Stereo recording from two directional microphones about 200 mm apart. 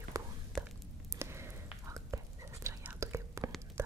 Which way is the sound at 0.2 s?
15° right (ahead or behind).